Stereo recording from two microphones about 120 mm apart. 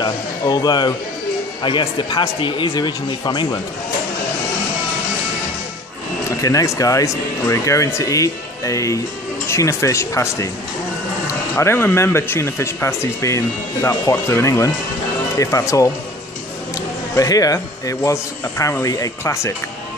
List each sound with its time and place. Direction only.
0.0 s speech: 35° left (ahead or behind)
6.3 s speech: 30° left (ahead or behind)
17.1 s speech: 30° left (ahead or behind)